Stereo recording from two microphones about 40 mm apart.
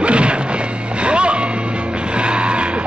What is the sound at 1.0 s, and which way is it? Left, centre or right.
Music, right.